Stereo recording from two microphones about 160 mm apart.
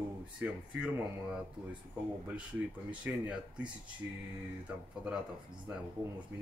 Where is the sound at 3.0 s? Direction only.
10° right (ahead or behind).